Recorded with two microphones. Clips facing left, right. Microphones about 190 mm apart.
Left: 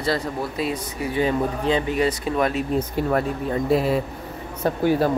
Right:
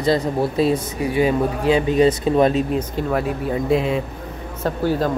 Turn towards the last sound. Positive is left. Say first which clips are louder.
# left 1 dB
turn(degrees=15)  # may be behind; listen again after turning